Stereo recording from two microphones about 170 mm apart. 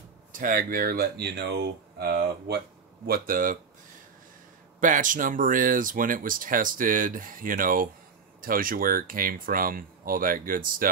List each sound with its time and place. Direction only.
0.3 s speech: 50° right (ahead or behind); by 2.6 s 70° right (ahead or behind)
3.1 s speech: 55° right (ahead or behind)
4.7 s speech: 50° right (ahead or behind)